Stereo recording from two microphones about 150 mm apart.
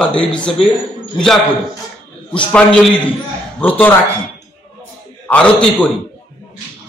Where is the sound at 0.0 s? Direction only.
5° left (ahead or behind).